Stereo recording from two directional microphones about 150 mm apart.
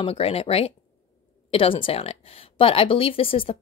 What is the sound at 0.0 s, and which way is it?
Speech, 40° left (ahead or behind).